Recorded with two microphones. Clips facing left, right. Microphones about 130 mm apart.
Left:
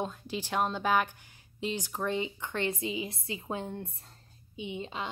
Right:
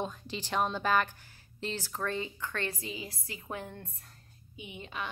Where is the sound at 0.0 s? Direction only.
10° left (ahead or behind).